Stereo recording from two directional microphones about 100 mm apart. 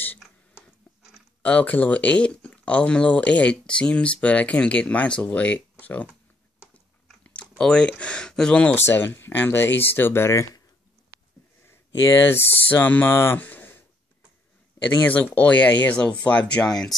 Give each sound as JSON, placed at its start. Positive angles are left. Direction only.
{"t": 1.4, "sound": "speech", "side_deg": 15}
{"t": 7.2, "sound": "chewing", "side_deg": 10}
{"t": 8.0, "sound": "speech", "side_deg": 10}
{"t": 8.8, "sound": "speech", "side_deg": 25}
{"t": 11.6, "sound": "a sound", "side_deg": 25}
{"t": 12.4, "sound": "speech", "side_deg": 20}
{"t": 15.0, "sound": "speech", "side_deg": 15}